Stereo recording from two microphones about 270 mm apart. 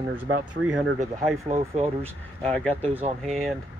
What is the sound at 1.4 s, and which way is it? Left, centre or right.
Speech, right.